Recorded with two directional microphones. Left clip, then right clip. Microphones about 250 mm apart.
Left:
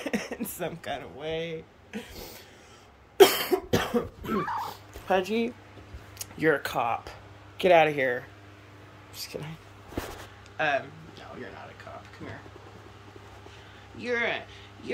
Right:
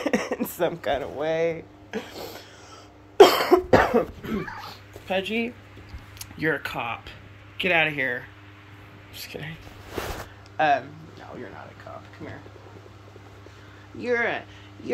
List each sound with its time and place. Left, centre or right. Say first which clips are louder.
0.0 s cough: right 7 dB; centre
1.4 s speech: right 10 dB; centre
3.2 s cough: right 5 dB; centre
4.4 s dog: left 4 dB; centre
6.1 s speech: left 1 dB; centre
10.6 s speech: right 7 dB; centre
14.0 s speech: right 4 dB; centre